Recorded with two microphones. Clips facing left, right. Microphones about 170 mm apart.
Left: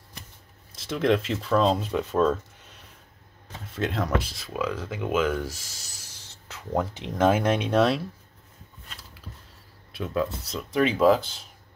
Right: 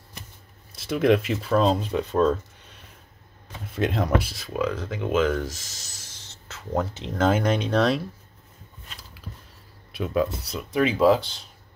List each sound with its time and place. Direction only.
0.7 s speech: 10° right (ahead or behind)
3.7 s speech: 20° right (ahead or behind)
4.6 s speech: 5° left (ahead or behind)
9.9 s speech: 15° right (ahead or behind); by 11.4 s centre (ahead or behind)